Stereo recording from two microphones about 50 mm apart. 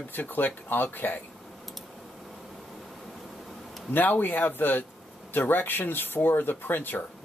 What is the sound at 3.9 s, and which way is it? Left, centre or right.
Speech, left.